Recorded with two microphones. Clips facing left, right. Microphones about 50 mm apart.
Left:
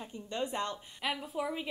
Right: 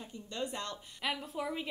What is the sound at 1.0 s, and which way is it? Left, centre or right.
Speech, centre.